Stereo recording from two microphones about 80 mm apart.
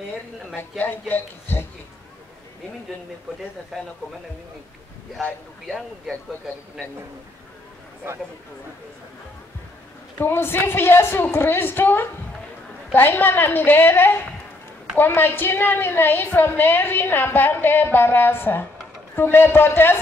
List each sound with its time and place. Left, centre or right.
0.6 s a woman's voice: left
3.7 s speech: centre
5.7 s speech: centre
10.1 s a woman's voice: left